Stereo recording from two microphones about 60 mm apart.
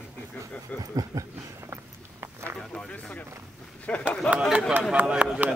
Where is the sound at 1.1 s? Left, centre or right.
Right.